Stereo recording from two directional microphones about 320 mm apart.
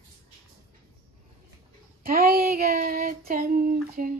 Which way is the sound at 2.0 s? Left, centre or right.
Right.